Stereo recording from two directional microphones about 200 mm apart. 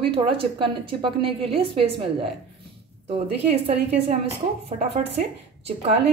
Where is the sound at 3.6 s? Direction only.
30° right (ahead or behind).